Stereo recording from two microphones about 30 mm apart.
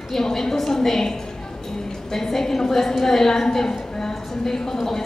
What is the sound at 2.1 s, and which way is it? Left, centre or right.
A woman's voice, centre.